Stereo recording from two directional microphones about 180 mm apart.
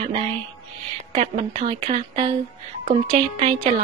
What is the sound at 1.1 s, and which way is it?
Speech, 35° right (ahead or behind).